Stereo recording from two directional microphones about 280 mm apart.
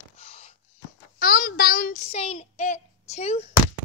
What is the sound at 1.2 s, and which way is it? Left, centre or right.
Child singing, left.